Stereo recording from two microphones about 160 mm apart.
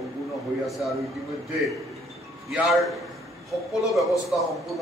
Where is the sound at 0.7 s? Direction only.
Centre (ahead or behind).